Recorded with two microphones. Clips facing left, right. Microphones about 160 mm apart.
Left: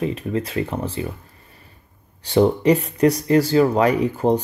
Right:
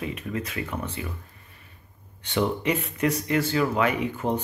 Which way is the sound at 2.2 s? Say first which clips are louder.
Left 9 dB; 35° left (ahead or behind).